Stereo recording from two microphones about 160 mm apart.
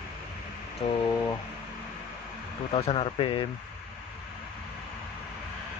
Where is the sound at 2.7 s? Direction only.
35° left (ahead or behind).